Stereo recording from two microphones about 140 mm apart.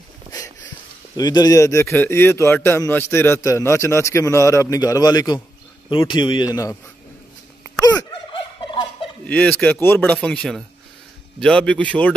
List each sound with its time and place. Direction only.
1.1 s a man's voice: 25° left (ahead or behind)
7.6 s fowl: 25° left (ahead or behind)
9.2 s speech: 10° left (ahead or behind)